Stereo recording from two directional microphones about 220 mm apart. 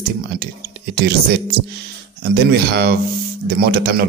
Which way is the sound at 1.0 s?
45° right (ahead or behind).